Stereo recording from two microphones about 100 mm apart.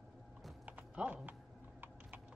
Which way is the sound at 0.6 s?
15° right (ahead or behind).